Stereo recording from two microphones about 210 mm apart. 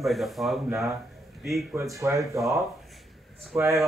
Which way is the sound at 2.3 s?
Centre (ahead or behind).